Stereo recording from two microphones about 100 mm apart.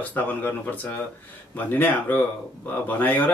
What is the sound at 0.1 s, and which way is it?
Speech, 20° left (ahead or behind).